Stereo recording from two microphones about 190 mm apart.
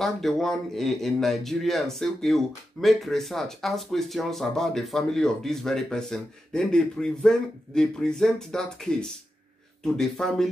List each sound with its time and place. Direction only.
0.0 s a man's voice: centre (ahead or behind)